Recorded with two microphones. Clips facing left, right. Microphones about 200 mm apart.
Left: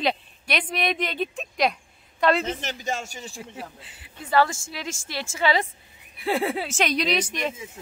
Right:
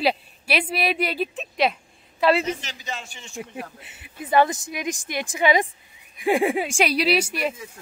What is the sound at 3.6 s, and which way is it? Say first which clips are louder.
A woman's voice: right 3 dB; 20° right (ahead or behind).